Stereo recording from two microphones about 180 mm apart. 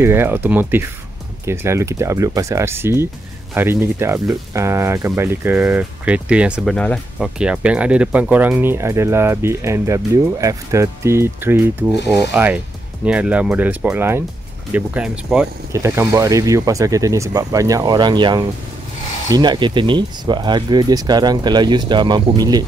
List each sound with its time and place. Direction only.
0.0 s speech: 15° right (ahead or behind)